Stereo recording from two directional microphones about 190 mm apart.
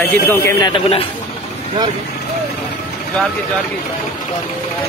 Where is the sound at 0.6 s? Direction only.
30° left (ahead or behind).